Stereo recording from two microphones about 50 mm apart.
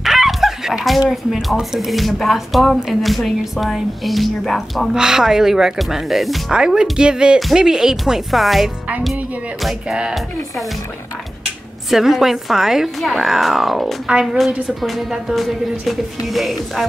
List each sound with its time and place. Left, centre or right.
0.0 s speech: centre
4.9 s speech: centre
6.5 s speech: centre
8.1 s speech: centre
11.9 s speech: centre